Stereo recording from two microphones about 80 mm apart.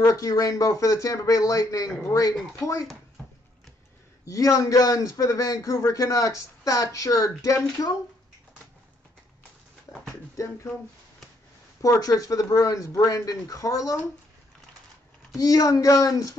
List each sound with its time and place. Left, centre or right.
0.0 s a man's voice: left
4.3 s a man's voice: left
9.9 s a sound: left
10.3 s speech: left
11.8 s a man's voice: left
15.3 s a man's voice: left